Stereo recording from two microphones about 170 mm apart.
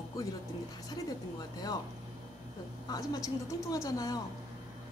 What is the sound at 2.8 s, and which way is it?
Speech, 20° left (ahead or behind).